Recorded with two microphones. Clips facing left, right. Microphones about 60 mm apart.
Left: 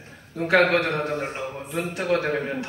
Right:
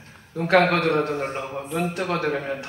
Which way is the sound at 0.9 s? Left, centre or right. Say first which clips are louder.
Right 4 dB; centre.